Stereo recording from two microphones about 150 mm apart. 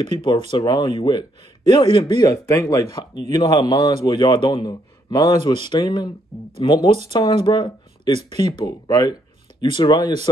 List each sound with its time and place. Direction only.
0.2 s speech: 35° left (ahead or behind)